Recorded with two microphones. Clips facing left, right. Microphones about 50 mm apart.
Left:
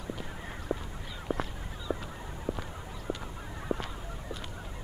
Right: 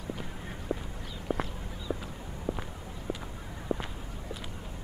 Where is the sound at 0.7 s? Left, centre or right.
Centre.